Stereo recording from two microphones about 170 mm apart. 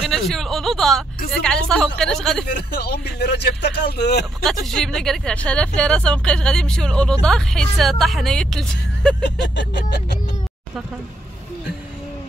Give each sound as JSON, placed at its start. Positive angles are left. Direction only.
{"t": 0.0, "sound": "speech", "side_deg": 0}
{"t": 2.4, "sound": "speech", "side_deg": 70}
{"t": 4.4, "sound": "speech", "side_deg": 0}